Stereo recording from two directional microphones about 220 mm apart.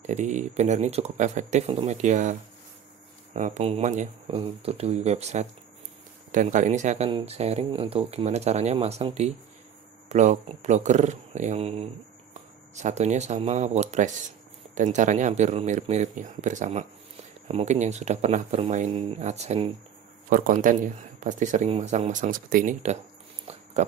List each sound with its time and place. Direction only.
0.0 s speech: 30° right (ahead or behind)
3.3 s speech: 30° right (ahead or behind)
23.4 s pig: 30° right (ahead or behind)